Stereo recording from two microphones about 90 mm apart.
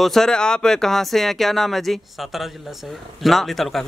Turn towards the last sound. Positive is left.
turn(degrees=0)  # may be behind; listen again after turning